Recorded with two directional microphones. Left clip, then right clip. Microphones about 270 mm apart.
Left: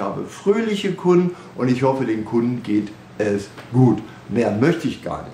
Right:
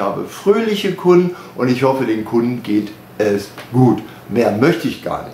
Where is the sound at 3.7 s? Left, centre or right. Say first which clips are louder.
Right 4 dB; centre.